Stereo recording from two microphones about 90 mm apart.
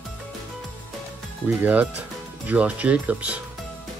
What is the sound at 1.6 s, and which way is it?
Speech, 20° right (ahead or behind).